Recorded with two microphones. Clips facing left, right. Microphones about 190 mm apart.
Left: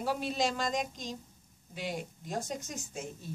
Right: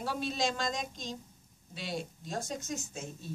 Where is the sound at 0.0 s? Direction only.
10° left (ahead or behind).